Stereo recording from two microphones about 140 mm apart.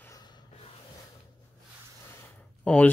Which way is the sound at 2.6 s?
10° left (ahead or behind).